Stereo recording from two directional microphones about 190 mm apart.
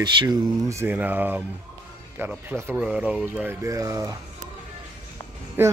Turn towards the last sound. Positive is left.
turn(degrees=-10)  # may be behind; listen again after turning